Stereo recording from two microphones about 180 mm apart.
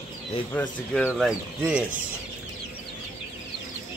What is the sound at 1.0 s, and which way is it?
Speech, 5° right (ahead or behind).